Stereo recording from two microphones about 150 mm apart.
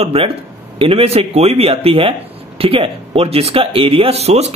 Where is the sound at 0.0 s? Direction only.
40° right (ahead or behind).